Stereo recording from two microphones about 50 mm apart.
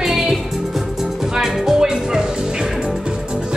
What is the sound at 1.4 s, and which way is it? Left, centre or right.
Music, centre.